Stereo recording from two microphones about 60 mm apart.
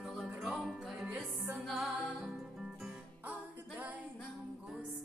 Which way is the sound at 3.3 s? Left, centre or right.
Right.